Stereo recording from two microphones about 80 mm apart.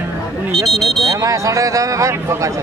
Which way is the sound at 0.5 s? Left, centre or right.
Centre.